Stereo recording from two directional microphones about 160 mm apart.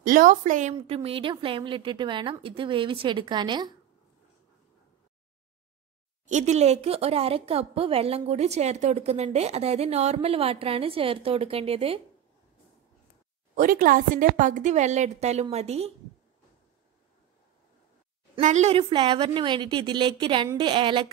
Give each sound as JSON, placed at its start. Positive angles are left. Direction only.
{"t": 0.0, "sound": "a woman's voice", "side_deg": -55}
{"t": 0.7, "sound": "speech", "side_deg": -35}
{"t": 6.2, "sound": "speech", "side_deg": -50}
{"t": 13.6, "sound": "a woman's voice", "side_deg": -60}
{"t": 18.4, "sound": "a woman's voice", "side_deg": -45}